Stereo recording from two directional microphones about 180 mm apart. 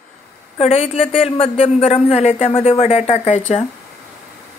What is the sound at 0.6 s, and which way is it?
Speech, 35° left (ahead or behind).